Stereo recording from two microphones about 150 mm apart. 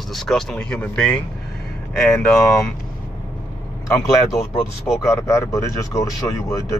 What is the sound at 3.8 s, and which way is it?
Speech, 20° left (ahead or behind).